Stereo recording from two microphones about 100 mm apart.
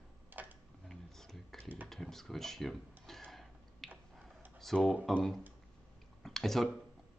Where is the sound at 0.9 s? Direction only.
5° left (ahead or behind).